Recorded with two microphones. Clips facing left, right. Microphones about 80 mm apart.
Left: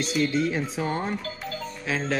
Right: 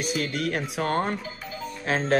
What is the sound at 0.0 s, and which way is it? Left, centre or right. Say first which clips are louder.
Speech: left 3 dB; right.